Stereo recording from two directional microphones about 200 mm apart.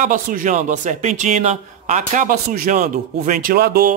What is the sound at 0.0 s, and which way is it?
Speech, 40° right (ahead or behind).